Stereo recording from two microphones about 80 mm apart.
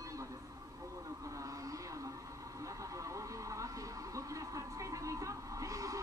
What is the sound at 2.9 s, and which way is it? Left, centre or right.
Vehicle, right.